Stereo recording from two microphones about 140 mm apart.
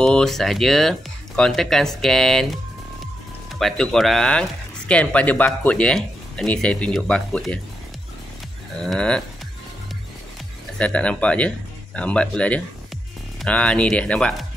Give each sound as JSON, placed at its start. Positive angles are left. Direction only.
{"t": 0.0, "sound": "speech", "side_deg": 5}
{"t": 3.5, "sound": "speech", "side_deg": 5}
{"t": 8.8, "sound": "speech", "side_deg": 5}
{"t": 10.8, "sound": "speech", "side_deg": 10}